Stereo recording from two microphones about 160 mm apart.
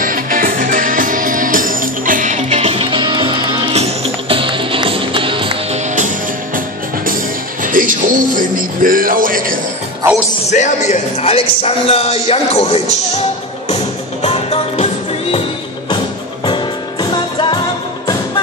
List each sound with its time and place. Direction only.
0.0 s music: 60° right (ahead or behind); by 5.8 s 35° right (ahead or behind)
5.9 s music: 55° right (ahead or behind)
7.6 s music: 55° right (ahead or behind)
10.5 s speech: 45° left (ahead or behind)
13.7 s music: 40° left (ahead or behind)
16.4 s music: 30° left (ahead or behind)